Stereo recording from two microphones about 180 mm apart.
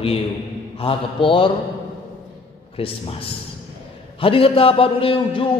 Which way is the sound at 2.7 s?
30° left (ahead or behind).